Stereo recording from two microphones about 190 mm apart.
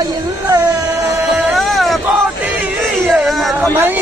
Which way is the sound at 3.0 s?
Centre (ahead or behind).